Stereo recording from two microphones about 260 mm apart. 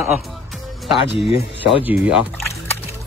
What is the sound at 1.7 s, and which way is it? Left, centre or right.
Speech, centre.